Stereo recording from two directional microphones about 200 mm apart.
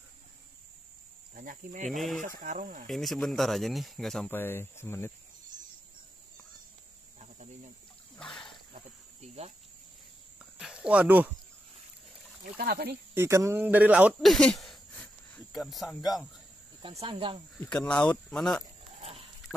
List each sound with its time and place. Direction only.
1.3 s speech: 45° right (ahead or behind)
1.9 s speech: centre (ahead or behind)
2.2 s speech: 40° right (ahead or behind)
2.9 s speech: centre (ahead or behind)
7.2 s cricket: 35° right (ahead or behind)
8.2 s splash: centre (ahead or behind)
8.7 s cricket: 30° right (ahead or behind)
10.4 s speech: 5° right (ahead or behind)
12.5 s speech: 50° right (ahead or behind)
13.1 s speech: 15° right (ahead or behind)
16.8 s speech: 25° right (ahead or behind)
17.6 s speech: 5° left (ahead or behind)
18.9 s a sound: 30° right (ahead or behind)